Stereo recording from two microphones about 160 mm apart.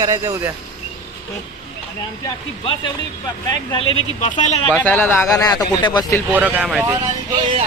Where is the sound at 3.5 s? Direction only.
25° left (ahead or behind).